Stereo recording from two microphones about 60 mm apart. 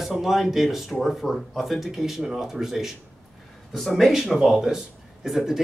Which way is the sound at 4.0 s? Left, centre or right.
Centre.